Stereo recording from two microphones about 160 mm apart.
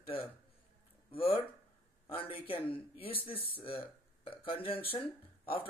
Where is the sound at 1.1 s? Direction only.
35° left (ahead or behind).